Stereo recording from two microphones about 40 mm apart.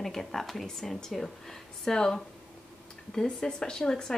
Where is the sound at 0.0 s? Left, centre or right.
Centre.